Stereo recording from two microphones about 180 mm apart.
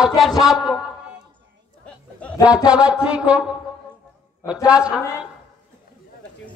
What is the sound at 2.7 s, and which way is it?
Speech, 5° right (ahead or behind).